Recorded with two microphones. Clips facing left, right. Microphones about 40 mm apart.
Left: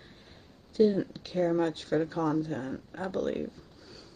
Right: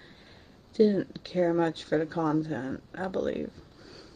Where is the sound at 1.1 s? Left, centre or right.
Right.